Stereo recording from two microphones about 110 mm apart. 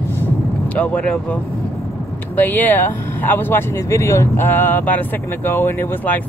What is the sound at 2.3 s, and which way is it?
Speech, 15° left (ahead or behind).